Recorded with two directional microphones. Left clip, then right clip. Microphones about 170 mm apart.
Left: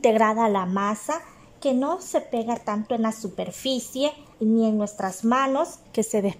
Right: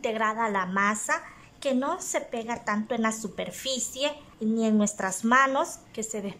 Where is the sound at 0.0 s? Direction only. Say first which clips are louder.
Left 7 dB; 30° left (ahead or behind); by 5.7 s 10° left (ahead or behind).